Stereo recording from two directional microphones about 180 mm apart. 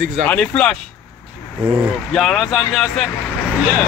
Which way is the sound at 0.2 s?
5° left (ahead or behind).